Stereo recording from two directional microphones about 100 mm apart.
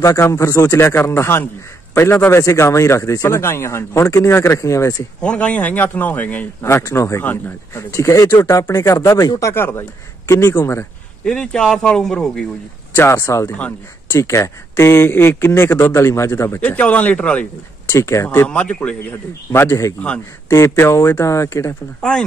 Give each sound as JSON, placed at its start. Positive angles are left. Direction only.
{"t": 0.0, "sound": "a man's voice", "side_deg": 30}
{"t": 5.2, "sound": "a man's voice", "side_deg": 10}
{"t": 6.6, "sound": "a man's voice", "side_deg": 30}
{"t": 7.9, "sound": "a man's voice", "side_deg": 30}
{"t": 11.2, "sound": "a man's voice", "side_deg": 5}
{"t": 12.9, "sound": "a man's voice", "side_deg": 25}
{"t": 16.6, "sound": "a man's voice", "side_deg": 15}
{"t": 17.9, "sound": "a man's voice", "side_deg": 30}
{"t": 18.5, "sound": "a man's voice", "side_deg": 15}